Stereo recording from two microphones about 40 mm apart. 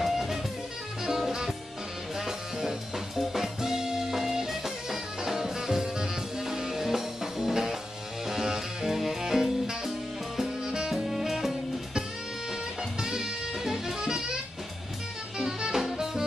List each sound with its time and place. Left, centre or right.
0.0 s music: centre
11.1 s music: centre
13.0 s music: centre
15.3 s music: centre